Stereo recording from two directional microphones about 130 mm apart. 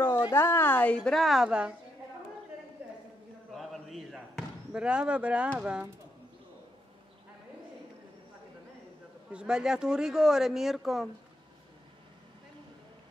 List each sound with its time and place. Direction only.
0.3 s a woman's voice: 15° left (ahead or behind); by 1.7 s 5° right (ahead or behind)
3.5 s basketball bounce: centre (ahead or behind)
9.3 s speech: 5° right (ahead or behind)